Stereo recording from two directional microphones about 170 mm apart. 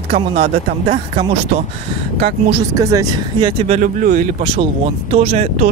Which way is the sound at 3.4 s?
40° right (ahead or behind).